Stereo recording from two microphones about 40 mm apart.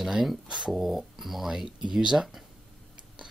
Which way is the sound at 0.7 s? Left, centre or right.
Centre.